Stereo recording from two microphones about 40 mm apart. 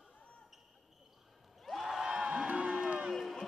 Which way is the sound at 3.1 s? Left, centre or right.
Centre.